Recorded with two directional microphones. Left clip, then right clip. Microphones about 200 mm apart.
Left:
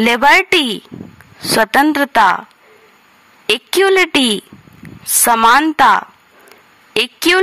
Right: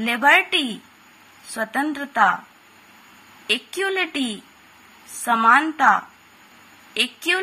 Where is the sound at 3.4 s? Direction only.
55° left (ahead or behind).